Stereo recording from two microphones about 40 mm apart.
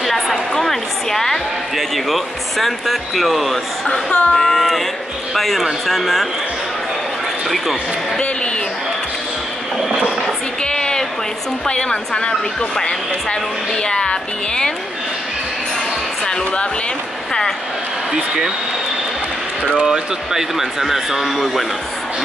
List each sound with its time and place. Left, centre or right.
0.0 s a sound: centre
1.8 s speech: centre
3.9 s speech: left
4.4 s speech: centre
10.6 s a sound: left
11.6 s speech: left
13.8 s speech: left
18.1 s speech: centre
19.8 s speech: centre